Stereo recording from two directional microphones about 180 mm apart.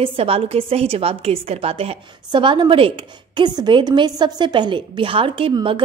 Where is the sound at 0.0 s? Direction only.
30° right (ahead or behind).